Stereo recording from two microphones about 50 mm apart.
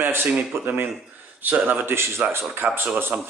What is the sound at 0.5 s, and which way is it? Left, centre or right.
Speech, right.